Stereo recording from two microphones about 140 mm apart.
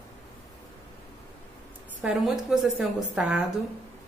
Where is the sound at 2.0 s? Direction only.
5° right (ahead or behind).